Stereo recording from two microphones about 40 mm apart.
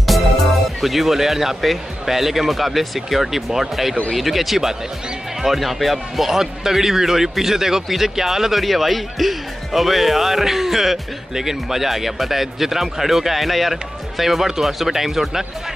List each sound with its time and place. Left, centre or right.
0.7 s speech: centre